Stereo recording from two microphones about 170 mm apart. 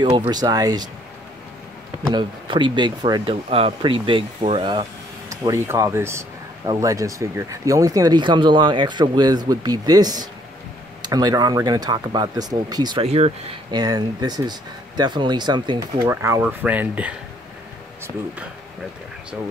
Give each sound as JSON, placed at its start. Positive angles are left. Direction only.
{"t": 0.3, "sound": "speech", "side_deg": -20}
{"t": 2.0, "sound": "speech", "side_deg": -25}
{"t": 5.3, "sound": "speech", "side_deg": -20}
{"t": 13.0, "sound": "speech", "side_deg": -40}
{"t": 13.7, "sound": "speech", "side_deg": -25}
{"t": 16.1, "sound": "speech", "side_deg": -15}